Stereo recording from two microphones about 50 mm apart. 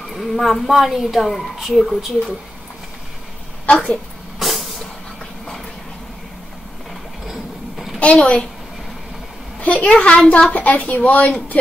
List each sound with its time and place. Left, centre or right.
0.1 s a woman's voice: centre
3.6 s a woman's voice: centre
4.4 s vehicle: centre
6.9 s a sound: centre
8.0 s a woman's voice: left
9.6 s a woman's voice: left